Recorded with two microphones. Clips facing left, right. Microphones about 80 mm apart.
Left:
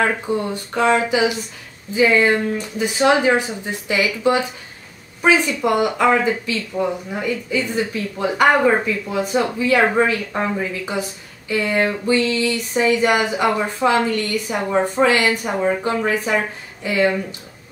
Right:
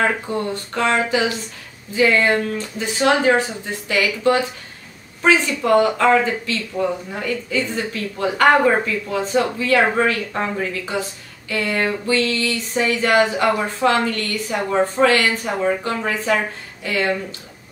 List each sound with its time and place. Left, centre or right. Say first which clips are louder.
0.3 s speech: left 2 dB; centre